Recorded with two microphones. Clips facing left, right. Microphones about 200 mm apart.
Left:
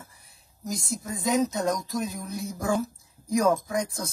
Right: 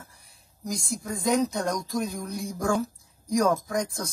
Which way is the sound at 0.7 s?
Centre (ahead or behind).